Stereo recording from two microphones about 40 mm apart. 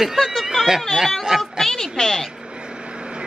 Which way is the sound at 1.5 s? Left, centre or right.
Centre.